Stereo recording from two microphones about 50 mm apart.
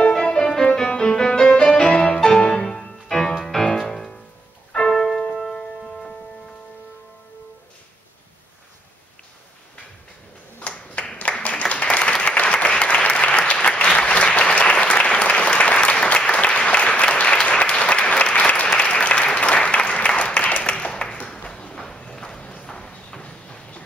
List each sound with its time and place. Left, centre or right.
0.1 s music: centre
10.6 s clapping: left
11.1 s applause: left
20.9 s a sound: centre
22.4 s clip-clop: left